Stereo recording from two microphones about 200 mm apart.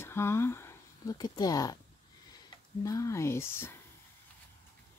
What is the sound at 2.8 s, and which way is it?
Speech, 15° left (ahead or behind).